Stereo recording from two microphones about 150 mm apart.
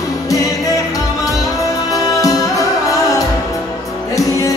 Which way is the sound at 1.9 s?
25° left (ahead or behind).